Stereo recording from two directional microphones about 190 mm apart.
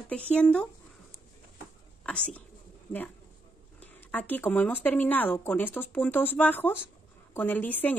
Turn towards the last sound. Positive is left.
turn(degrees=10)  # may be behind; listen again after turning